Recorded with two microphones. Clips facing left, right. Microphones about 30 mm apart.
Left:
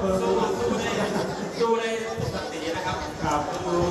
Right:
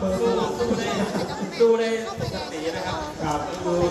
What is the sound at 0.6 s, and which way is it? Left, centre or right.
Speech, right.